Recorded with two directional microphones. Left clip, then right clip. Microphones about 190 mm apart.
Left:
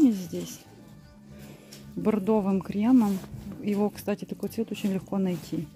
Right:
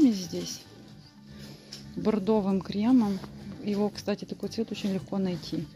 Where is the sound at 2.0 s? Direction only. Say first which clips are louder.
Left 1 dB; 20° left (ahead or behind).